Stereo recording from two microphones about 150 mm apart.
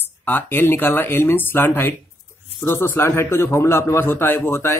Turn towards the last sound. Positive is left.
turn(degrees=15)  # may be behind; listen again after turning